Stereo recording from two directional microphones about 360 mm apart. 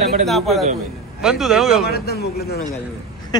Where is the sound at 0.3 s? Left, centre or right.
Centre.